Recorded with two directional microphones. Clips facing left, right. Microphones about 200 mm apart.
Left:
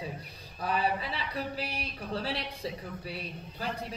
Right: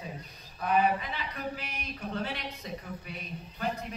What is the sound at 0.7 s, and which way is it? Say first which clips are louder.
Speech: right 4 dB; 35° left (ahead or behind).